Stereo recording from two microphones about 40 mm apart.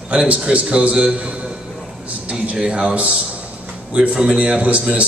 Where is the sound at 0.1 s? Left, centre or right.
Right.